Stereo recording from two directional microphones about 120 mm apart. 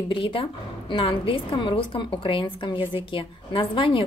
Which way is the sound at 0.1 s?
45° left (ahead or behind).